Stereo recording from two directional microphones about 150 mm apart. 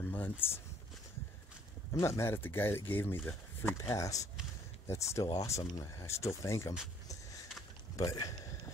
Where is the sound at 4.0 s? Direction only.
20° left (ahead or behind).